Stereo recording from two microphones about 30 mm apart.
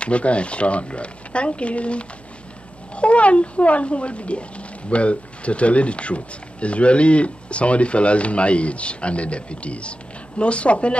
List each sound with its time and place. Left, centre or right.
0.0 s speech: left